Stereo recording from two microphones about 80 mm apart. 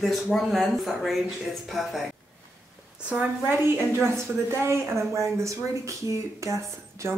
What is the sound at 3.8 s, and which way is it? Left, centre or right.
A woman's voice, right.